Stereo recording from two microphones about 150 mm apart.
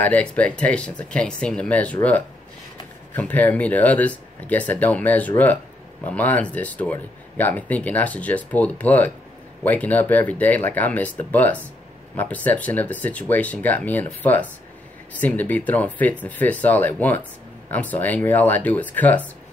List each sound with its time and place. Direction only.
0.0 s speech: 10° left (ahead or behind)